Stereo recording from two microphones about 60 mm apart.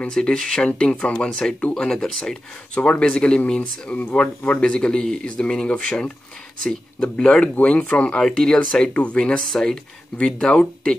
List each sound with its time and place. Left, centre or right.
0.1 s speech: centre
8.2 s speech: centre